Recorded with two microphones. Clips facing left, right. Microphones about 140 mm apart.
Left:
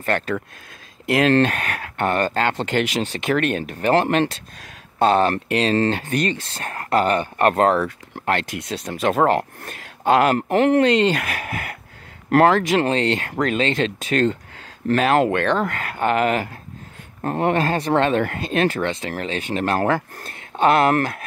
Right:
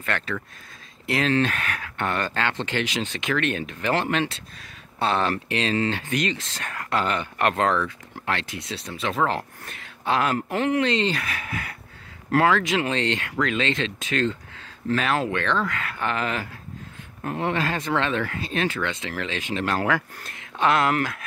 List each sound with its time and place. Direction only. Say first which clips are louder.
0.0 s speech: left 6 dB; 40° left (ahead or behind)
1.0 s speech: left 6 dB; 55° left (ahead or behind)
18.8 s speech: left 4 dB; 35° left (ahead or behind)
20.7 s speech: left 5 dB; 55° left (ahead or behind)